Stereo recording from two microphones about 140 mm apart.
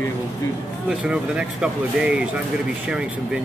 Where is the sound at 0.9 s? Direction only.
5° right (ahead or behind).